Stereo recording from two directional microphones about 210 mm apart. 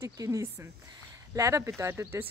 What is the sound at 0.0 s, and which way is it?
Speech, 15° right (ahead or behind).